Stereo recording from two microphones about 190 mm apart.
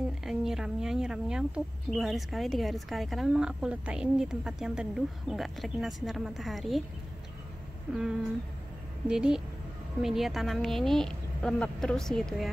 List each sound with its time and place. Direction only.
0.2 s a woman's voice: centre (ahead or behind)
7.9 s a woman's voice: centre (ahead or behind)